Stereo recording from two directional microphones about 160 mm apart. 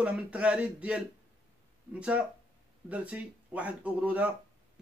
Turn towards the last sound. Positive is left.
turn(degrees=-10)  # may be behind; listen again after turning